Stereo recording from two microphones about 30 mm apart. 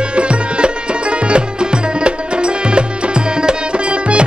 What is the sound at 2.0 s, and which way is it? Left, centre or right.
Music, right.